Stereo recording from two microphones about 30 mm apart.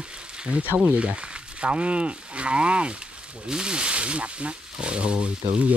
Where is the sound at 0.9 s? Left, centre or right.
Right.